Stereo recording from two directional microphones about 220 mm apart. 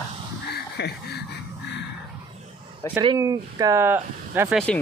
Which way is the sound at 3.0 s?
20° right (ahead or behind).